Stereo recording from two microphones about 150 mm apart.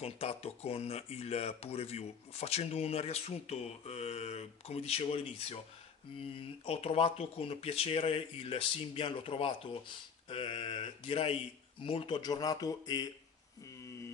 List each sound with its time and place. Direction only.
0.0 s speech: 45° left (ahead or behind); by 13.1 s 25° left (ahead or behind)